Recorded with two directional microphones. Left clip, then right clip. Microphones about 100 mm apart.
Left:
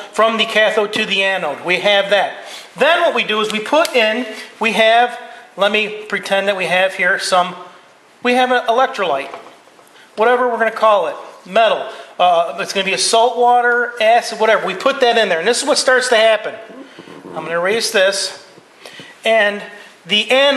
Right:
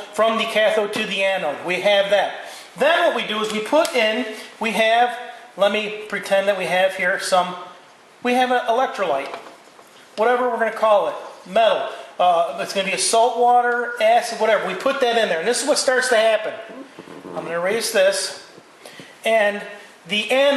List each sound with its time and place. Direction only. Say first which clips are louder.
0.1 s speech: left 5 dB; 15° left (ahead or behind)
10.2 s speech: left 5 dB; 15° left (ahead or behind)
12.2 s speech: left 4 dB; 15° left (ahead or behind)
19.2 s speech: left 4 dB; 15° left (ahead or behind)